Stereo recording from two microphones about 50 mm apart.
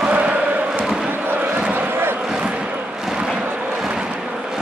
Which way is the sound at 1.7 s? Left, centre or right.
Right.